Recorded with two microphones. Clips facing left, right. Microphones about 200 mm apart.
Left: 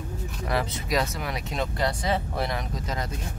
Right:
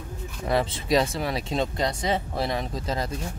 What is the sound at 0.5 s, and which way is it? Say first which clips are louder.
Speech: right 4 dB; 25° right (ahead or behind).